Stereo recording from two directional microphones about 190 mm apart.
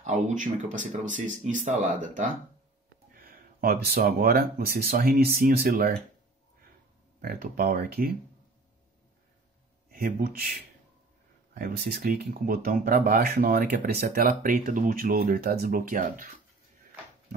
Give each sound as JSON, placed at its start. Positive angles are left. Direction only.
{"t": 0.0, "sound": "speech", "side_deg": -40}
{"t": 7.2, "sound": "speech", "side_deg": -50}
{"t": 9.8, "sound": "speech", "side_deg": -50}
{"t": 11.5, "sound": "speech", "side_deg": -50}